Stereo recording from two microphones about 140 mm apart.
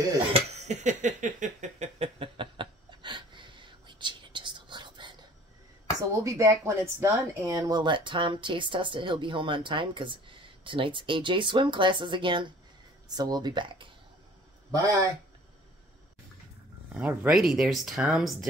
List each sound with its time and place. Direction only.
0.3 s a sound: 50° right (ahead or behind); by 5.1 s 35° right (ahead or behind)
5.9 s a woman's voice: 20° right (ahead or behind)
16.9 s speech: 10° right (ahead or behind)